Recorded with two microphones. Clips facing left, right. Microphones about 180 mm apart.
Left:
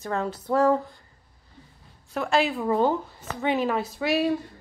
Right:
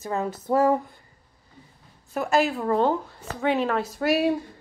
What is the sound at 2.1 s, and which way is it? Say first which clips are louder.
Speech: right 1 dB; 5° right (ahead or behind).